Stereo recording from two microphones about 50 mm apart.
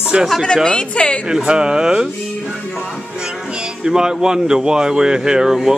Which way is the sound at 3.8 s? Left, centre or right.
Centre.